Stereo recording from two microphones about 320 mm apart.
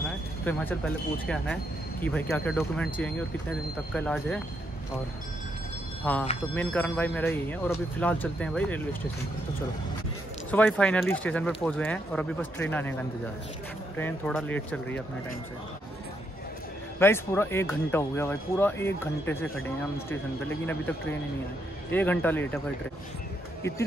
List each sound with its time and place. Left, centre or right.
0.5 s speech: centre
6.0 s speech: centre
10.5 s speech: centre
13.9 s speech: centre
17.0 s speech: centre
21.9 s speech: centre